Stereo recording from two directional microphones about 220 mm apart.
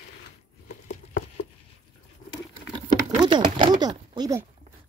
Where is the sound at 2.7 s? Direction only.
20° right (ahead or behind).